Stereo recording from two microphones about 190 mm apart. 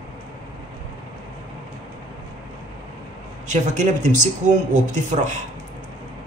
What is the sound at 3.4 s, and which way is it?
A man's voice, 40° right (ahead or behind).